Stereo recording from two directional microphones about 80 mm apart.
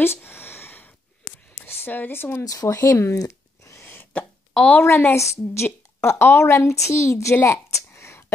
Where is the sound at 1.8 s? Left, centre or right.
Left.